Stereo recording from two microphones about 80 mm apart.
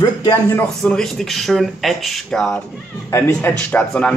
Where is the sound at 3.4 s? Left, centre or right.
Left.